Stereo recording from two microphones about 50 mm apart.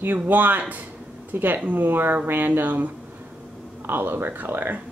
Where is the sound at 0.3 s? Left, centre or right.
Right.